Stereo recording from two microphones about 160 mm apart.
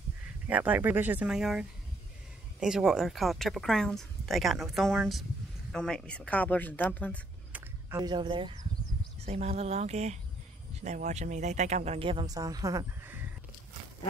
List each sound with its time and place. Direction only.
0.5 s a woman's voice: 10° right (ahead or behind); by 7.2 s 10° left (ahead or behind)
8.0 s speech: 30° right (ahead or behind)
9.2 s speech: 40° right (ahead or behind); by 13.3 s 10° right (ahead or behind)